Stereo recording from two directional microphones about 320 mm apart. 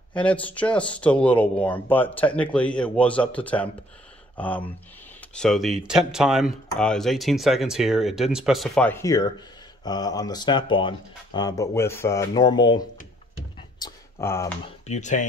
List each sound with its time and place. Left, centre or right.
0.1 s speech: centre
13.6 s a sound: centre
14.9 s speech: left